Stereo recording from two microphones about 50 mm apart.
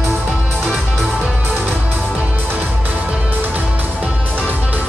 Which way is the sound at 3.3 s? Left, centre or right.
Right.